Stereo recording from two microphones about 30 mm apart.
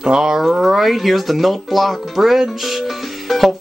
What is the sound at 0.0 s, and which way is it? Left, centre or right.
Speech, right.